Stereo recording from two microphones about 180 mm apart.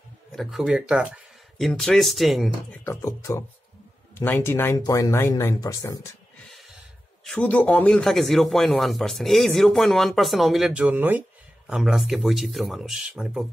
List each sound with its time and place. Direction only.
0.4 s speech: centre (ahead or behind)
2.8 s speech: 15° left (ahead or behind)
7.2 s speech: 5° left (ahead or behind)